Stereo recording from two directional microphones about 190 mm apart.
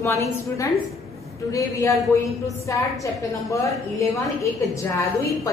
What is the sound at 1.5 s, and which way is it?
A woman's voice, 15° left (ahead or behind).